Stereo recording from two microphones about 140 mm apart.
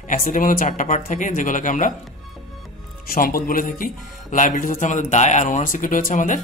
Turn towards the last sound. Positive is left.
turn(degrees=65)  # may be behind; listen again after turning